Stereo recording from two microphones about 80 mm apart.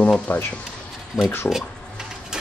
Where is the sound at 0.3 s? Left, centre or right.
Left.